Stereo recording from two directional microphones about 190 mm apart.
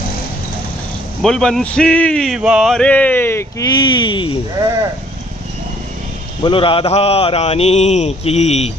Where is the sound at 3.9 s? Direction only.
25° left (ahead or behind).